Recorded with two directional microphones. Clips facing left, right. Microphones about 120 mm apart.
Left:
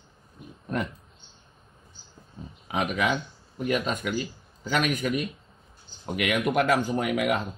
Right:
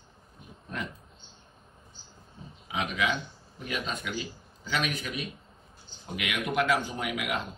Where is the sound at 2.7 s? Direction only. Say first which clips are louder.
Left 4 dB; 50° left (ahead or behind).